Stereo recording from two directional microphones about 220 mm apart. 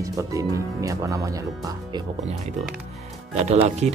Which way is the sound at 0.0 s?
15° right (ahead or behind).